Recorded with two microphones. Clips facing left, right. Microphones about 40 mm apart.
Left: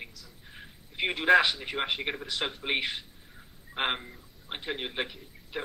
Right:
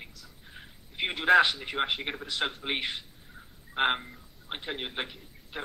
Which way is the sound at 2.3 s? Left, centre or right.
Right.